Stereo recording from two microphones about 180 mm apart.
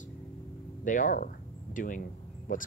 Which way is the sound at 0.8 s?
45° left (ahead or behind).